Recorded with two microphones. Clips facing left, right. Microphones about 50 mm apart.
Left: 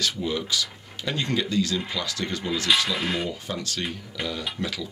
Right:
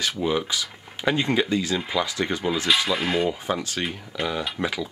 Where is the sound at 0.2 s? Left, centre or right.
Right.